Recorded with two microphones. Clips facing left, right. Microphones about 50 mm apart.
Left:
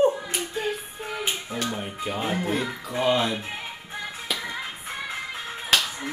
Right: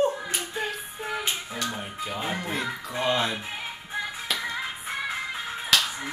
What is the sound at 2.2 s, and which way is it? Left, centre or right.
Speech, centre.